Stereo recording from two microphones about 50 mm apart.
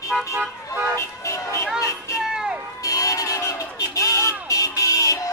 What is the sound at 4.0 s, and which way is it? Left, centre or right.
Vehicle, left.